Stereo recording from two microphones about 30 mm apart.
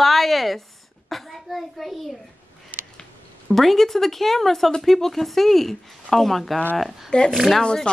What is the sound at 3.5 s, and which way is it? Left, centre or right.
A woman's voice, centre.